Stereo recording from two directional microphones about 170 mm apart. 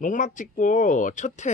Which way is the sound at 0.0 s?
50° left (ahead or behind).